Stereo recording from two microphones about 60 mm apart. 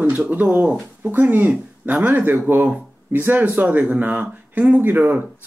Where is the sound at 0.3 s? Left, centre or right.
Right.